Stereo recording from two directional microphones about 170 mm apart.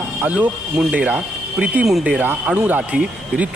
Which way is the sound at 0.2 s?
10° right (ahead or behind).